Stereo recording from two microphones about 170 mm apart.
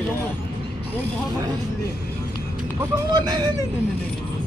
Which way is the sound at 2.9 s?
25° right (ahead or behind).